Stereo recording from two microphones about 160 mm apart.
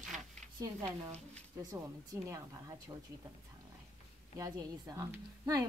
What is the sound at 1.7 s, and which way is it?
A woman's voice, 20° right (ahead or behind).